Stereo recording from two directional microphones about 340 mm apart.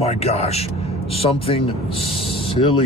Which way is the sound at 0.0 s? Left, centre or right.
Centre.